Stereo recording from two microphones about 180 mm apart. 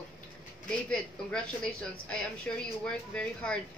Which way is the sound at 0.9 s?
5° left (ahead or behind).